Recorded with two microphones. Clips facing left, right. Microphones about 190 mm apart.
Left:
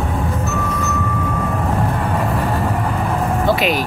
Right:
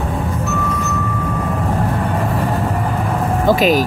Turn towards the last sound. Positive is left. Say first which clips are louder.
# right 4 dB
turn(degrees=-45)  # may be behind; listen again after turning